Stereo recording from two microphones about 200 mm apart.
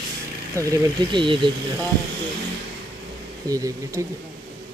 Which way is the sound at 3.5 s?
15° right (ahead or behind).